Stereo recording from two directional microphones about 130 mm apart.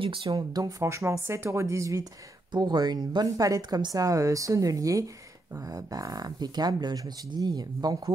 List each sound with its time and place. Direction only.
0.0 s speech: 45° right (ahead or behind)
0.3 s a woman's voice: 30° right (ahead or behind)